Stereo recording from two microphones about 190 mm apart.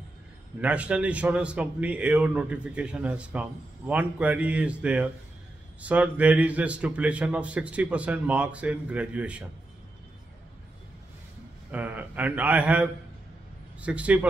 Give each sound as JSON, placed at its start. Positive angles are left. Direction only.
{"t": 0.6, "sound": "a man's voice", "side_deg": -5}
{"t": 11.7, "sound": "a man's voice", "side_deg": -10}